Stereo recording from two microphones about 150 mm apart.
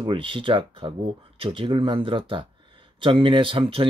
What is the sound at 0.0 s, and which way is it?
Speech, 35° right (ahead or behind).